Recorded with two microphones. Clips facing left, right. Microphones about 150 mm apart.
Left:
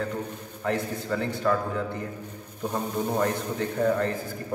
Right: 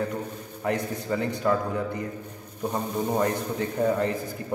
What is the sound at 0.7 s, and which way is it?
A man's voice, 15° right (ahead or behind).